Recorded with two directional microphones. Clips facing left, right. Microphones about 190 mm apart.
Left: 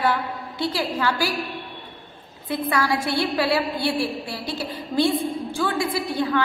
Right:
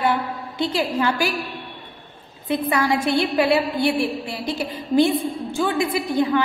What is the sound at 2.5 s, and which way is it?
A woman's voice, 20° right (ahead or behind).